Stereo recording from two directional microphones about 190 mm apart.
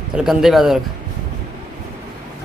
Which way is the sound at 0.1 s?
5° right (ahead or behind).